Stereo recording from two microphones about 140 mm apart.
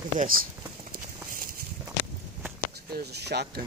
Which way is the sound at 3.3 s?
90° right.